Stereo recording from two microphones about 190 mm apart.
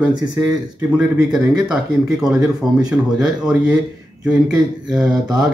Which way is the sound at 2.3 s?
20° right (ahead or behind).